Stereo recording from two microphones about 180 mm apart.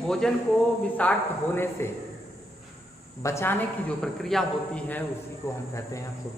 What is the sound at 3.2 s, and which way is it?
A man's voice, 15° left (ahead or behind).